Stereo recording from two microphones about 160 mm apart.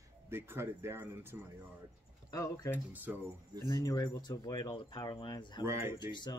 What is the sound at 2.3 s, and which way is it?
Speech, 20° left (ahead or behind).